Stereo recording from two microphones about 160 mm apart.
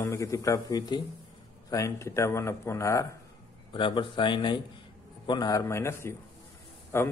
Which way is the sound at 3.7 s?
30° left (ahead or behind).